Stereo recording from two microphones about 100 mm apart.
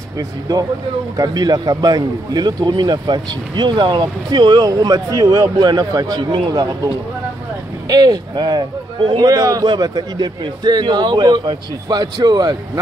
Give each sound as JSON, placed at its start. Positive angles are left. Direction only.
{"t": 0.2, "sound": "a man's voice", "side_deg": -40}
{"t": 7.9, "sound": "a man's voice", "side_deg": -45}